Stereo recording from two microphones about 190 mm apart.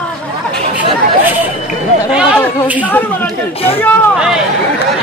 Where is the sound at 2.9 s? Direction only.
10° left (ahead or behind).